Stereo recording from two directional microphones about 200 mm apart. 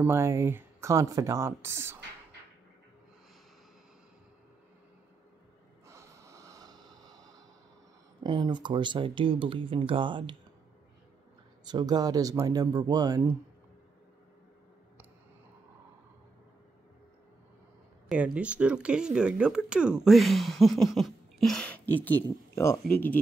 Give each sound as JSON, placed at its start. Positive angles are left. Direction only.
{"t": 0.0, "sound": "speech", "side_deg": -10}
{"t": 5.9, "sound": "snort", "side_deg": -15}
{"t": 8.2, "sound": "speech", "side_deg": -25}
{"t": 11.6, "sound": "speech", "side_deg": -20}
{"t": 18.0, "sound": "speech", "side_deg": -5}